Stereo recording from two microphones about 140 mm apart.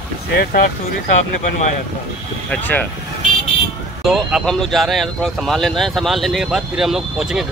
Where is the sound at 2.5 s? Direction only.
10° left (ahead or behind).